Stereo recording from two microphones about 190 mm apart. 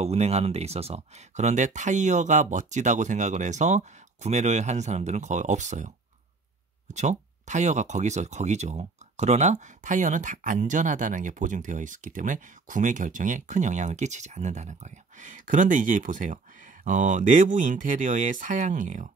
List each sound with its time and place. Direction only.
0.0 s speech: 35° right (ahead or behind)
6.9 s speech: 40° right (ahead or behind)